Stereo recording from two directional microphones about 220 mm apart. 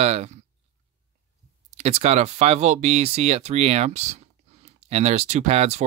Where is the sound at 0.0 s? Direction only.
30° right (ahead or behind).